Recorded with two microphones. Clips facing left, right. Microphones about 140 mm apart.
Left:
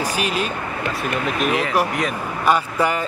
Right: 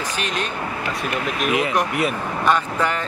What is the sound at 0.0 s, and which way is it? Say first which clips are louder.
Speech: left 3 dB; 10° left (ahead or behind).